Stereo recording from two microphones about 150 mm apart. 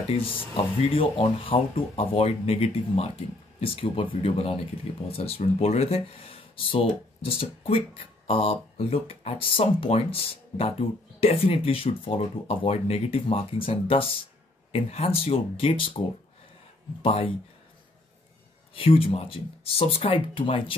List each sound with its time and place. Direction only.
0.9 s speech: 35° left (ahead or behind)
17.0 s speech: 35° left (ahead or behind)
18.8 s speech: 40° left (ahead or behind)